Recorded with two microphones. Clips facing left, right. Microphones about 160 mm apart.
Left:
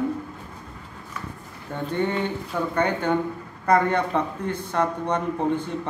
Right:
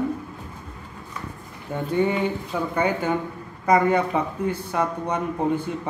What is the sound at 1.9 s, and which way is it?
Speech, 10° right (ahead or behind).